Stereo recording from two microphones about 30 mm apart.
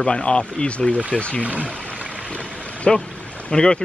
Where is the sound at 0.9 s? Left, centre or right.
Left.